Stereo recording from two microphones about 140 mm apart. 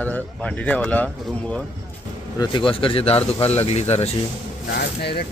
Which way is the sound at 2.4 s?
35° left (ahead or behind).